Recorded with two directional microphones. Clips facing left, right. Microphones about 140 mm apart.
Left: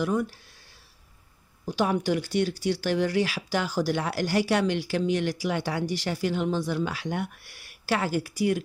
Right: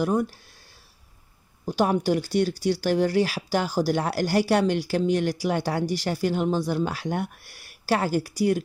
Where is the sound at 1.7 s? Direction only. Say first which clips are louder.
Right 3 dB; 40° right (ahead or behind).